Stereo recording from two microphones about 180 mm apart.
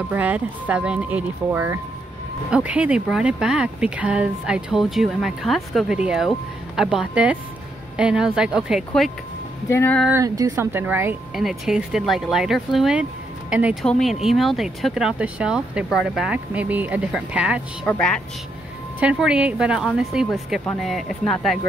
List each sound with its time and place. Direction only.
0.1 s speech: 10° right (ahead or behind)
9.7 s speech: 10° left (ahead or behind)
10.0 s speech: 15° right (ahead or behind)
11.3 s speech: centre (ahead or behind)
17.8 s speech: 5° left (ahead or behind)
18.9 s speech: 5° right (ahead or behind)